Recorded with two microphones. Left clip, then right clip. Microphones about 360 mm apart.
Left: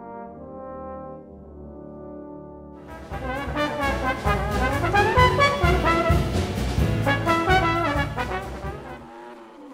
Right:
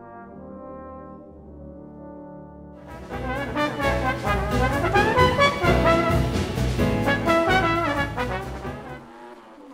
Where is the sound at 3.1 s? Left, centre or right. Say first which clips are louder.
Right 1 dB; centre.